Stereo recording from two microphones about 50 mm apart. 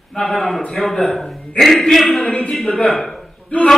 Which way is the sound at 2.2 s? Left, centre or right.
Left.